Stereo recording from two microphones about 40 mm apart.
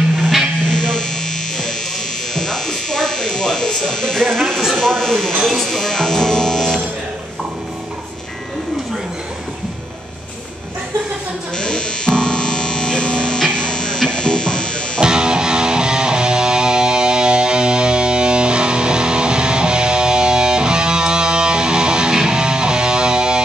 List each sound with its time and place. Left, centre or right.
0.7 s electric shaver: left
2.3 s electric shaver: centre
4.7 s speech: centre
5.7 s music: centre
11.5 s music: left
15.0 s music: right